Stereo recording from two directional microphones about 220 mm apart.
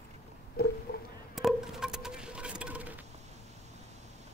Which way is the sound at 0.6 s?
45° left (ahead or behind).